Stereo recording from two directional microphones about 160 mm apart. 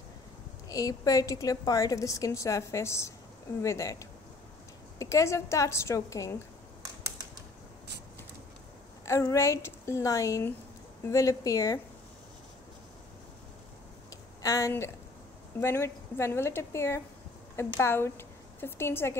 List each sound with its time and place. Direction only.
0.7 s a woman's voice: 20° left (ahead or behind)
9.0 s a woman's voice: 20° left (ahead or behind)
14.4 s a woman's voice: 20° left (ahead or behind)